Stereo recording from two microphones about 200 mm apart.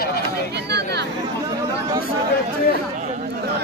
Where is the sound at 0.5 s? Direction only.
55° right (ahead or behind).